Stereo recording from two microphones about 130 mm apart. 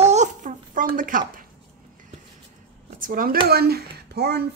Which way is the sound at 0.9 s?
90° right.